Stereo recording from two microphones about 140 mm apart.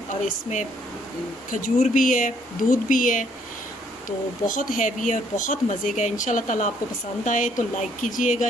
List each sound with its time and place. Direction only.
0.1 s speech: 60° left (ahead or behind)
1.5 s speech: 70° left (ahead or behind)
4.5 s speech: 70° left (ahead or behind)